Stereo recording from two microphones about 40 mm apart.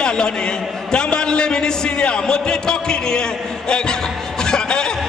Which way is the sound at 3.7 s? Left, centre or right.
Centre.